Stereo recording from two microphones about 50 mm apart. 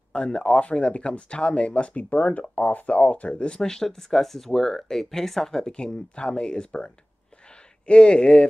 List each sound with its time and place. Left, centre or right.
0.1 s speech: centre